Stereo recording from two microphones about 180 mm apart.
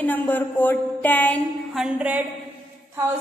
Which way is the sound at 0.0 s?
10° left (ahead or behind).